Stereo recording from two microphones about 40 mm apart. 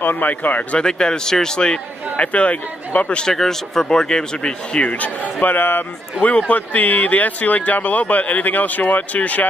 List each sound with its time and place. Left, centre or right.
0.0 s speech: left
0.7 s a man's voice: left
3.3 s a man's voice: centre; by 5.1 s left
5.4 s a man's voice: left
6.3 s speech: left